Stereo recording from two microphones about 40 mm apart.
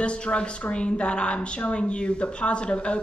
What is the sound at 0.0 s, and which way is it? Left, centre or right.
A woman's voice, left.